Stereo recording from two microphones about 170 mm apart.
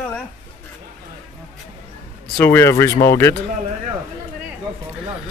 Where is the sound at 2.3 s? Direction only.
15° left (ahead or behind).